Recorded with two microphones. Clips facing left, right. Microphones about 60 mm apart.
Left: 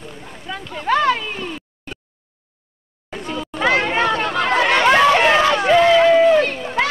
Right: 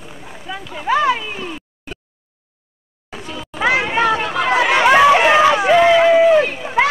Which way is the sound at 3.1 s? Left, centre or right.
Centre.